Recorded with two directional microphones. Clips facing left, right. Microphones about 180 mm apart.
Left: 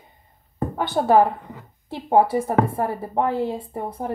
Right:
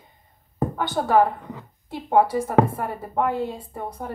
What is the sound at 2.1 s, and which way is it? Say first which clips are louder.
Speech: left 2 dB; 25° left (ahead or behind).